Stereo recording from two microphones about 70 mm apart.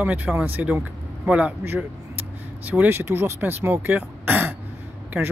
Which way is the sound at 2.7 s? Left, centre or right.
Right.